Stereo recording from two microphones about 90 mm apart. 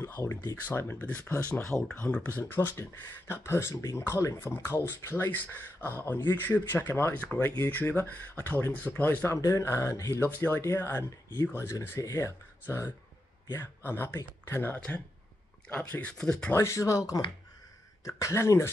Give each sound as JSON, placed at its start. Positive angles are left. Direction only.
{"t": 0.0, "sound": "speech", "side_deg": 35}
{"t": 2.0, "sound": "speech", "side_deg": 10}
{"t": 2.2, "sound": "speech", "side_deg": 25}
{"t": 15.7, "sound": "speech", "side_deg": 15}
{"t": 16.5, "sound": "speech", "side_deg": 35}